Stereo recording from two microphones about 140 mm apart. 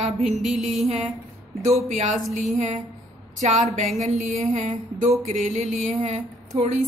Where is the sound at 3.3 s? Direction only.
55° right (ahead or behind).